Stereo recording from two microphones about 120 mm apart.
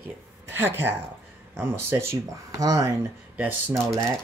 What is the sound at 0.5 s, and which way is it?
Speech, 20° right (ahead or behind).